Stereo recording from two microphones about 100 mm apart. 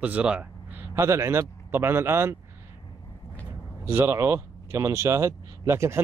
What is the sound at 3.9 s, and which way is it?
Speech, 25° right (ahead or behind).